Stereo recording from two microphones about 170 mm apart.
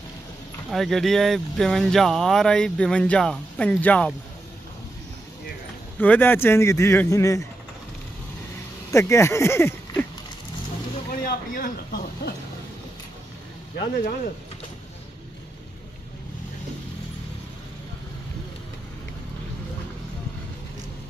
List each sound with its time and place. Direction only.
0.7 s speech: centre (ahead or behind)
5.9 s a man's voice: 10° left (ahead or behind)
8.9 s a man's voice: 15° left (ahead or behind)
11.1 s speech: 55° left (ahead or behind)